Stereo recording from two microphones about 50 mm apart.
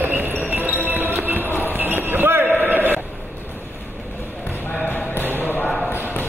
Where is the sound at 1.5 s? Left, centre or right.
Left.